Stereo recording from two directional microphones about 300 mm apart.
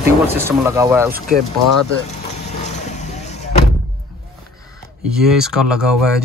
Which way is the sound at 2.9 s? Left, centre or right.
Left.